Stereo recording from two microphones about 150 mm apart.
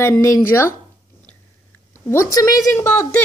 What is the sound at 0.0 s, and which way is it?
Speech, 20° left (ahead or behind).